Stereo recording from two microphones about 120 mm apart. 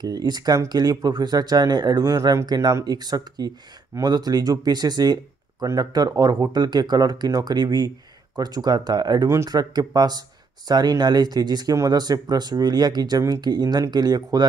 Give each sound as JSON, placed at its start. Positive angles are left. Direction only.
{"t": 0.0, "sound": "speech", "side_deg": -35}